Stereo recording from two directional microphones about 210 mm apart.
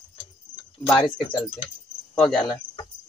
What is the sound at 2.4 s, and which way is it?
Speech, 20° left (ahead or behind).